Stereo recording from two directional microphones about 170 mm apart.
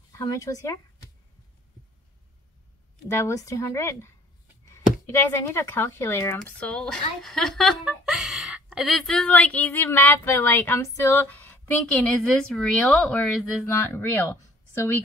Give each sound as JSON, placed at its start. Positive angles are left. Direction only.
{"t": 0.2, "sound": "speech", "side_deg": 20}
{"t": 3.1, "sound": "speech", "side_deg": 15}
{"t": 5.5, "sound": "speech", "side_deg": 15}